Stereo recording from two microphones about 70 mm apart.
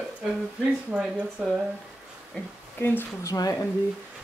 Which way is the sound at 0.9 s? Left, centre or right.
Centre.